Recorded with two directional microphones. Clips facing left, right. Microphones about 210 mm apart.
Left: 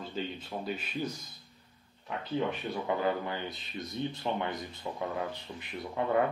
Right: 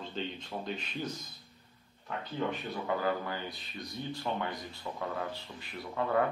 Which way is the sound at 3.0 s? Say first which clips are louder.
Left 2 dB; 20° left (ahead or behind).